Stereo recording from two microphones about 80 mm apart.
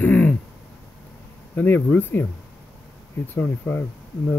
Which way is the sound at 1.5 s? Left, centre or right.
Left.